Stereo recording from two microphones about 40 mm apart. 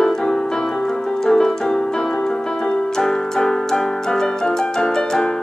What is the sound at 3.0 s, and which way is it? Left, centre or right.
Piano, centre.